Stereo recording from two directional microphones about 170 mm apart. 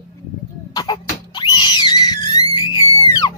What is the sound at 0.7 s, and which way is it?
Screaming, 25° left (ahead or behind).